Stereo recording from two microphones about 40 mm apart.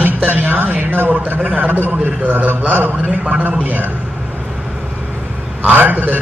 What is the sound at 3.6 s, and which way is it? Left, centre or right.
Speech, right.